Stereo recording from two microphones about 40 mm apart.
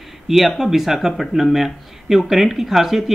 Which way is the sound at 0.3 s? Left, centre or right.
Centre.